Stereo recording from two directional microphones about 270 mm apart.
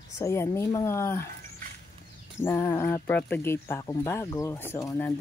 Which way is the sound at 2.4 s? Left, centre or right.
Centre.